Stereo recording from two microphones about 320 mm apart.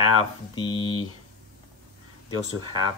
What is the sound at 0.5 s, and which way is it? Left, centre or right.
Speech, centre.